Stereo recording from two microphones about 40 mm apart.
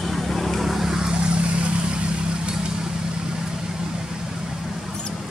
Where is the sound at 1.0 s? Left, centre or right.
Right.